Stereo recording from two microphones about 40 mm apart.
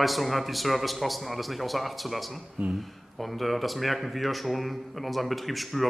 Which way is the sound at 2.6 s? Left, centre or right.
Right.